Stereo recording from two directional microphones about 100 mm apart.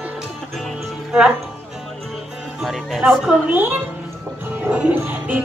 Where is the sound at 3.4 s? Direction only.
20° right (ahead or behind).